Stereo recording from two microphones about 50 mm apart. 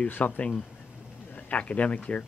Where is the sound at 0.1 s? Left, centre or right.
Left.